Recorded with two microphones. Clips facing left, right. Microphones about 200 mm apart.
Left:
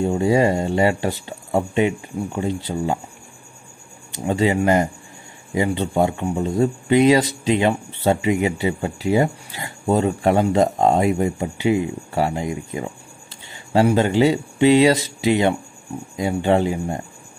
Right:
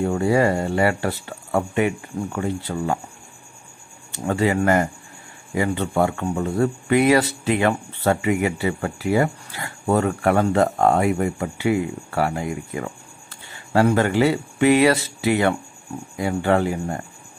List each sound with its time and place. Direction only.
0.0 s speech: 15° left (ahead or behind)
4.1 s speech: 15° left (ahead or behind)